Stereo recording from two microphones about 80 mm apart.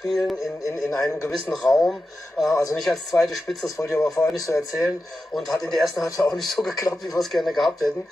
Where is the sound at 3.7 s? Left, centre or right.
Left.